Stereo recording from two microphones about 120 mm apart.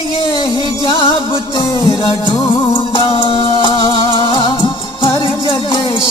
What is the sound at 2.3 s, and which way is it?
Music, 45° left (ahead or behind).